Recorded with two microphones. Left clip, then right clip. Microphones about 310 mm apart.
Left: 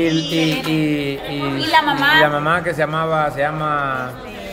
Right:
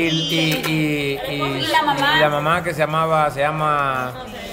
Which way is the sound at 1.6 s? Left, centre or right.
Centre.